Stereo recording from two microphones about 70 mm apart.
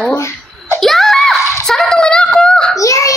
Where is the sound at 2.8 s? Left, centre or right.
Left.